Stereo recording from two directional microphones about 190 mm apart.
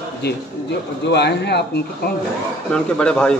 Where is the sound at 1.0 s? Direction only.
60° left (ahead or behind).